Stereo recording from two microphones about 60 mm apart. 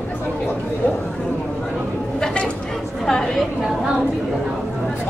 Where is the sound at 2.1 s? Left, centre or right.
Centre.